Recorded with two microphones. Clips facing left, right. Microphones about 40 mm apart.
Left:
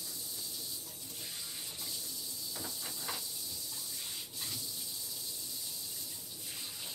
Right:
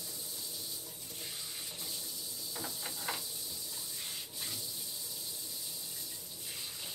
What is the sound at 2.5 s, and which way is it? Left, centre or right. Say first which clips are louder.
Hiss: right 3 dB; centre.